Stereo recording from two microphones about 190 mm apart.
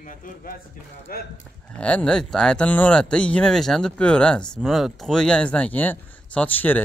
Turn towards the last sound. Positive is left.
turn(degrees=10)  # may be behind; listen again after turning